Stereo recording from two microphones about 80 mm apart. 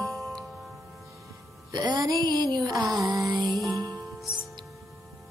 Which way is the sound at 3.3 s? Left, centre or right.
Right.